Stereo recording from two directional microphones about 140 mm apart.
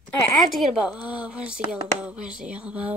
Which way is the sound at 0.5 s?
Centre (ahead or behind).